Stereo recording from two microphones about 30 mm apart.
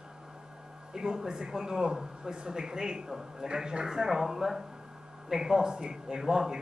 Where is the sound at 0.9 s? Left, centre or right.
Right.